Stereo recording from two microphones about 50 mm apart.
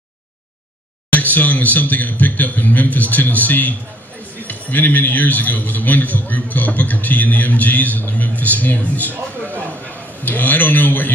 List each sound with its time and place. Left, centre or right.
1.1 s a man's voice: left